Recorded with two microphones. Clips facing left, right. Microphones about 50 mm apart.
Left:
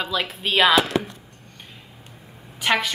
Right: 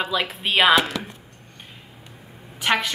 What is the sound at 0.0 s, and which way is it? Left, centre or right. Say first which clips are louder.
Speech: right 1 dB; centre.